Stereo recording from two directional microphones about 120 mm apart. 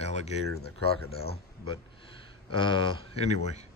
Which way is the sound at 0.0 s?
65° left (ahead or behind).